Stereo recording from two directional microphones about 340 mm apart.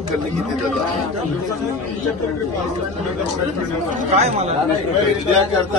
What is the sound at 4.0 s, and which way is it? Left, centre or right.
Speech, centre.